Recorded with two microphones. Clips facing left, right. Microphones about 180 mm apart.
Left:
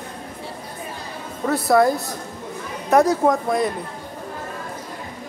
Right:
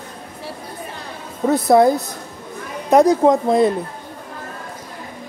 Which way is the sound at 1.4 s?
20° right (ahead or behind).